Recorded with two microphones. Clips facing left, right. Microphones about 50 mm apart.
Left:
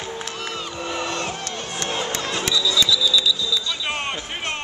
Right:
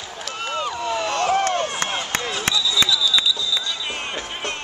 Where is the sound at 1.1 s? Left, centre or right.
Right.